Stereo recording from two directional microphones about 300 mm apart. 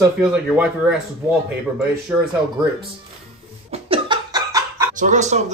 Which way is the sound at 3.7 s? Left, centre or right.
Centre.